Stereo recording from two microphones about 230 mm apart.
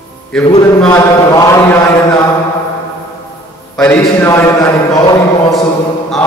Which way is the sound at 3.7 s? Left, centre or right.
Centre.